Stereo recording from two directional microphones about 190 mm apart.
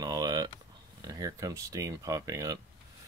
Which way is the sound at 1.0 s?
20° right (ahead or behind).